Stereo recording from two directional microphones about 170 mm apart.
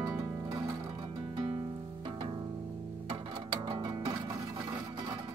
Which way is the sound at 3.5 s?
25° right (ahead or behind).